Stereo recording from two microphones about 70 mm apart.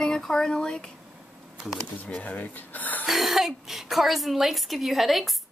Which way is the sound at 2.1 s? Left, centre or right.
Left.